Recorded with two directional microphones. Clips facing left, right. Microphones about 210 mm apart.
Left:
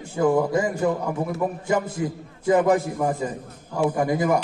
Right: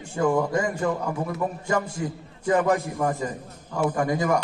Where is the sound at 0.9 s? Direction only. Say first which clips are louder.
Left 2 dB; 15° left (ahead or behind).